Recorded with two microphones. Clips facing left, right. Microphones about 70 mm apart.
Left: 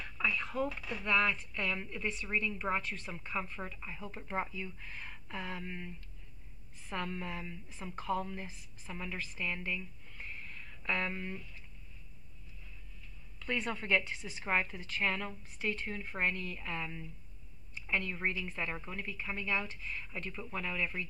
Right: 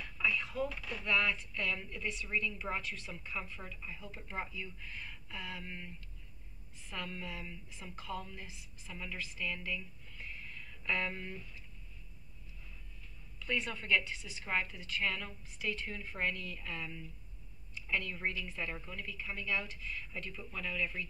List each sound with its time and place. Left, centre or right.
0.2 s radio: left
0.7 s a woman's voice: left
6.9 s a woman's voice: left
13.4 s a woman's voice: left